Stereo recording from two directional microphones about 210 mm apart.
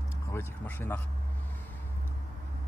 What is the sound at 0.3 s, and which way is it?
Speech, 10° left (ahead or behind).